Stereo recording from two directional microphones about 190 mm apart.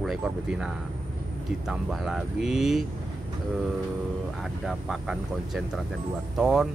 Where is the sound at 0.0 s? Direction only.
5° right (ahead or behind).